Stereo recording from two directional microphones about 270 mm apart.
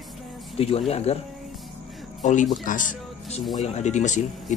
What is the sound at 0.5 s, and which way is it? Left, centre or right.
Speech, left.